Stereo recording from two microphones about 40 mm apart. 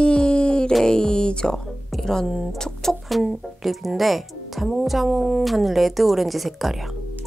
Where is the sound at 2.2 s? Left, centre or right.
Centre.